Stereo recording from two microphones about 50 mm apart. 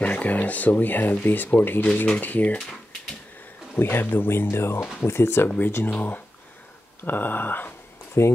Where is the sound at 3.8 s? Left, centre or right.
Left.